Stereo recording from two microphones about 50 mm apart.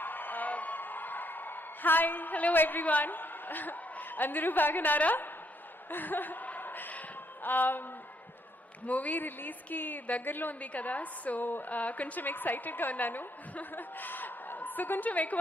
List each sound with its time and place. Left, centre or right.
0.0 s a sound: left
7.4 s a woman's voice: left
8.8 s a woman's voice: left